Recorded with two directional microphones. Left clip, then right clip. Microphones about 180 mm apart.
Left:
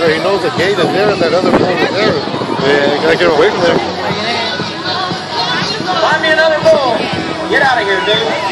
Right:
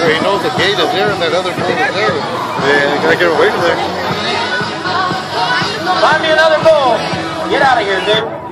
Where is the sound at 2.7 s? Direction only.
10° left (ahead or behind).